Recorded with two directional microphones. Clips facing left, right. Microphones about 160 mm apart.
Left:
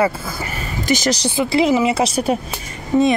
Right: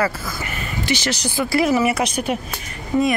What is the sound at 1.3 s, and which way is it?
A woman's voice, 20° left (ahead or behind).